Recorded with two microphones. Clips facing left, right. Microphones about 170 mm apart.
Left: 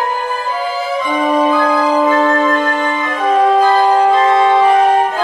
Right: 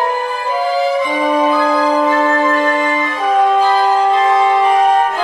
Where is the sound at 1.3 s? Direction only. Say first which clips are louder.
Left 2 dB; centre (ahead or behind).